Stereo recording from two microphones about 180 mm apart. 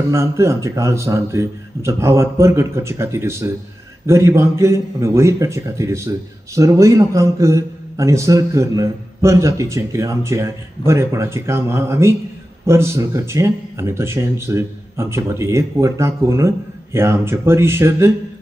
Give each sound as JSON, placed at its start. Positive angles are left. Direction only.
{"t": 0.1, "sound": "speech", "side_deg": -15}